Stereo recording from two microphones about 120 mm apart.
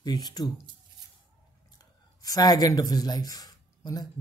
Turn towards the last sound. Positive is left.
turn(degrees=35)  # may be behind; listen again after turning